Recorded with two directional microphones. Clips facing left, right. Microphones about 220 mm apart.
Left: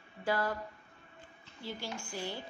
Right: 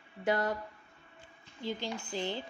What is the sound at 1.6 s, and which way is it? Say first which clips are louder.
Speech: right 4 dB; 20° right (ahead or behind).